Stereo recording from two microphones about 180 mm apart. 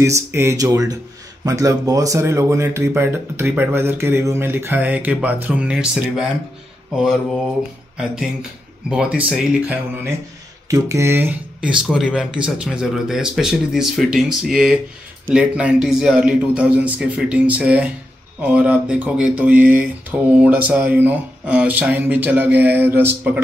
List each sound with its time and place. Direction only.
0.0 s speech: 15° right (ahead or behind)